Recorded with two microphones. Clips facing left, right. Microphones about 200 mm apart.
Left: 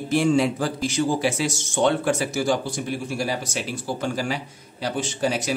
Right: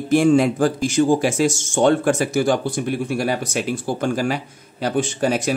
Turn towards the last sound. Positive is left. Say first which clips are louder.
# right 4 dB
turn(degrees=-50)  # may be behind; listen again after turning